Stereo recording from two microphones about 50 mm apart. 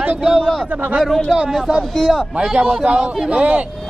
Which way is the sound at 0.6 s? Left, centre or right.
Right.